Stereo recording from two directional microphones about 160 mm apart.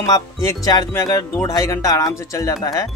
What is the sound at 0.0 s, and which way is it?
Speech, 25° left (ahead or behind).